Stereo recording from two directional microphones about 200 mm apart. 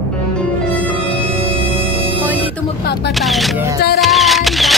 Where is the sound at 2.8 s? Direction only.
55° left (ahead or behind).